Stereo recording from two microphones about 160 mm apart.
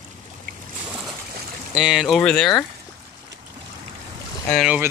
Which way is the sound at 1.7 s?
5° right (ahead or behind).